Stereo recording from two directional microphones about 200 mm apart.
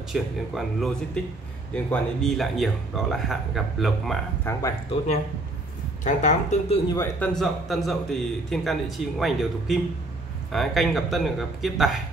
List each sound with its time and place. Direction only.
0.1 s a man's voice: centre (ahead or behind)
4.5 s speech: 15° left (ahead or behind)
6.0 s speech: 35° left (ahead or behind)
7.0 s a man's voice: 5° left (ahead or behind)